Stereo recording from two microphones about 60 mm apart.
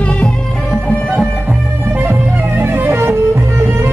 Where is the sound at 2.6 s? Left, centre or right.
Right.